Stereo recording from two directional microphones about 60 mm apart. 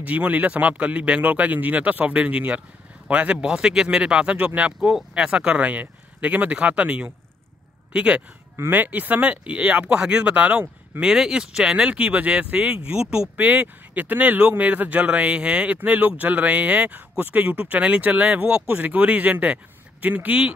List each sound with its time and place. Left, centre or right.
0.0 s speech: right
8.7 s speech: right
11.0 s speech: centre
13.4 s speech: right